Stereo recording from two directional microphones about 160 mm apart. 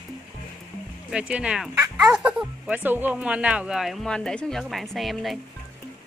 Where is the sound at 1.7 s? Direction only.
20° right (ahead or behind).